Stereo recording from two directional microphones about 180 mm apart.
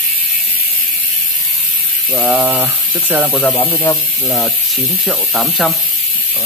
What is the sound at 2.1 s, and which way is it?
Speech, 10° right (ahead or behind).